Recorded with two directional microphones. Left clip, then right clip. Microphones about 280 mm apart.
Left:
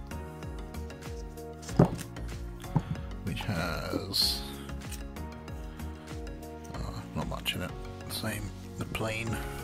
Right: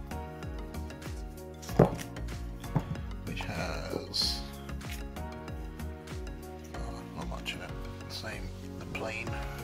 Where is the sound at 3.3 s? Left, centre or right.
Left.